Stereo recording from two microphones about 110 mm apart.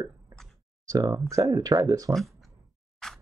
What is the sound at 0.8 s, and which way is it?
Speech, 35° right (ahead or behind).